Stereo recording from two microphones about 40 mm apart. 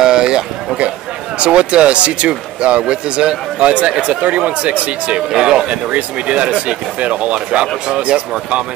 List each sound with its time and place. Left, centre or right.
0.0 s a sound: centre
1.4 s speech: right
5.3 s speech: centre
5.7 s speech: right